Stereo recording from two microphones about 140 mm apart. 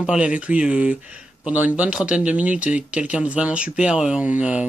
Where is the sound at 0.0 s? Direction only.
5° right (ahead or behind).